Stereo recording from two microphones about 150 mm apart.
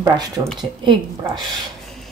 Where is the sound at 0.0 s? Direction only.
20° right (ahead or behind).